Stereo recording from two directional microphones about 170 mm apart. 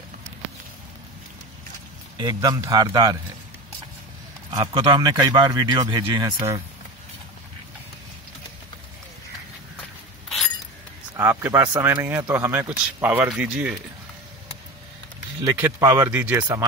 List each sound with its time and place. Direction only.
2.1 s speech: 20° right (ahead or behind)
4.5 s speech: 25° right (ahead or behind)
11.1 s speech: 15° right (ahead or behind)
11.8 s speech: 15° right (ahead or behind)
15.4 s speech: 15° right (ahead or behind)